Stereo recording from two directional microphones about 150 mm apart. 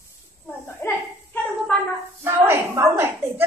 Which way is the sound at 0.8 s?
15° left (ahead or behind).